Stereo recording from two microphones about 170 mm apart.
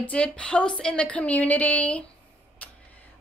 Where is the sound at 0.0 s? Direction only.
5° left (ahead or behind).